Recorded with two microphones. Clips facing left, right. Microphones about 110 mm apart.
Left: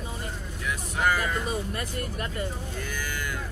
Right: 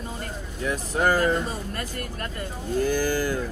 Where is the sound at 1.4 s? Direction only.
20° left (ahead or behind).